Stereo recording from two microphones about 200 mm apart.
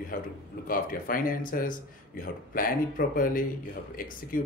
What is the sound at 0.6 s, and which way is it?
Speech, 45° left (ahead or behind).